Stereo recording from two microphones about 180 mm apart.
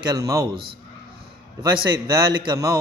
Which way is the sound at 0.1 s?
20° right (ahead or behind).